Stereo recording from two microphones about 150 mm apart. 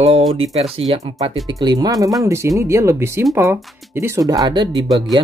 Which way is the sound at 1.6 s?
25° right (ahead or behind).